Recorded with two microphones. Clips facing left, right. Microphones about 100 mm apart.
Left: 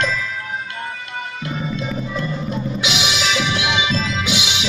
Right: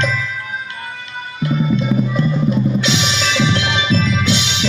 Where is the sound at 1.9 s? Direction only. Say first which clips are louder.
Right 9 dB; 15° right (ahead or behind).